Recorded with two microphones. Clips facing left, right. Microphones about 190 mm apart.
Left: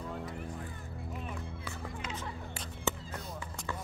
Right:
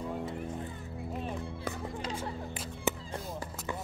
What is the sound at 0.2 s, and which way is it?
Music, 25° right (ahead or behind).